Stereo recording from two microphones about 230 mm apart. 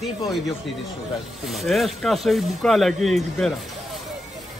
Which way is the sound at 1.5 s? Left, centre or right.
Centre.